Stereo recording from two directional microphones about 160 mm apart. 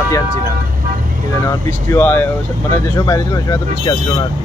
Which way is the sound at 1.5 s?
15° left (ahead or behind).